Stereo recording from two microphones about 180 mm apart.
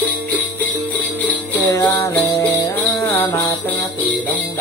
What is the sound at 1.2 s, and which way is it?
Music, 20° left (ahead or behind).